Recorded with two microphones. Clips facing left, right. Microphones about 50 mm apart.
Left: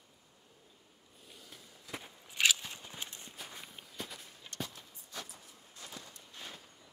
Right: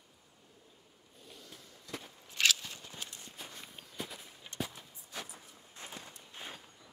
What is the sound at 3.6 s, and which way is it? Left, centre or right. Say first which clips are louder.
Walk: right 1 dB; centre.